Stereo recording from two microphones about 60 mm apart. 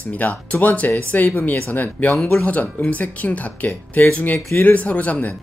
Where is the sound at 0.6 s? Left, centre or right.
Left.